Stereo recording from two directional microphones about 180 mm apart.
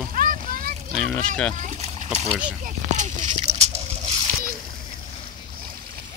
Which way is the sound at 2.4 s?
45° right (ahead or behind).